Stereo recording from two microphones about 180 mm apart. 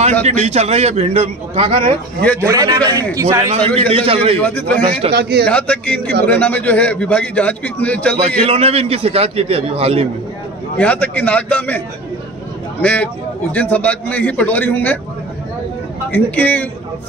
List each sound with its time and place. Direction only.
0.2 s a man's voice: 40° right (ahead or behind)
2.4 s a man's voice: 20° right (ahead or behind)
3.6 s a man's voice: 10° left (ahead or behind)
3.9 s a man's voice: 30° right (ahead or behind)
4.4 s a man's voice: 10° left (ahead or behind)
5.1 s a man's voice: 65° right (ahead or behind)
5.5 s a man's voice: 5° left (ahead or behind)
8.4 s a man's voice: 35° right (ahead or behind)
10.8 s a man's voice: 10° left (ahead or behind)
12.8 s a man's voice: 10° left (ahead or behind)
16.1 s a man's voice: 10° left (ahead or behind)